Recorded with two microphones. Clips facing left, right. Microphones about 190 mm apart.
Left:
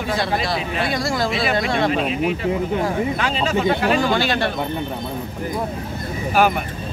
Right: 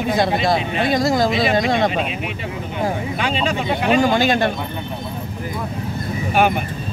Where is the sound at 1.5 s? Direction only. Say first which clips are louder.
Right 3 dB; 20° right (ahead or behind).